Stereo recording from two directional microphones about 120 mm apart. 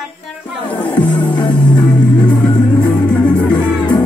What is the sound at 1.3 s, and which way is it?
Music, 40° left (ahead or behind).